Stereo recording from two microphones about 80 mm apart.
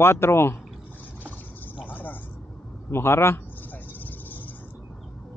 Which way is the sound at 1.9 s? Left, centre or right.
Left.